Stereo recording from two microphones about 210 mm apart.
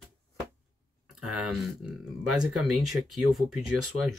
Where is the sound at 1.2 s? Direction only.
Centre (ahead or behind).